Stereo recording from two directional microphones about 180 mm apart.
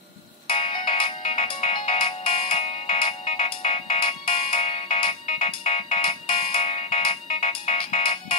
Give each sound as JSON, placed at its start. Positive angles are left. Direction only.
{"t": 0.5, "sound": "ringtone", "side_deg": 30}